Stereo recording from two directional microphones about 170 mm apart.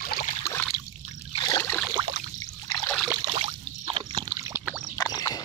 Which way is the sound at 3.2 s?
30° right (ahead or behind).